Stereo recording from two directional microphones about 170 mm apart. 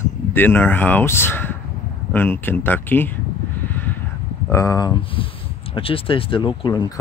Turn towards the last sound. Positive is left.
turn(degrees=25)  # may be behind; listen again after turning